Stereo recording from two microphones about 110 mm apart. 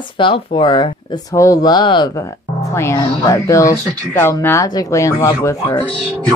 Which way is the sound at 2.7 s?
25° left (ahead or behind).